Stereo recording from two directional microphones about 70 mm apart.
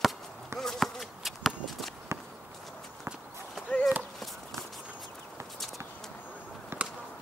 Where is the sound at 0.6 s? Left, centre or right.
Centre.